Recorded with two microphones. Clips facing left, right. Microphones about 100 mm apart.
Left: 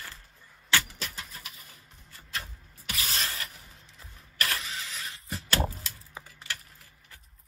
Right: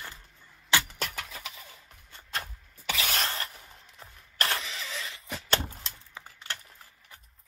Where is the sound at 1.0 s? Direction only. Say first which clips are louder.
Right 4 dB; 85° right.